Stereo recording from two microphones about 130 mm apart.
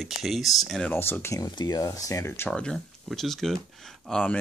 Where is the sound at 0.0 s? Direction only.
Centre (ahead or behind).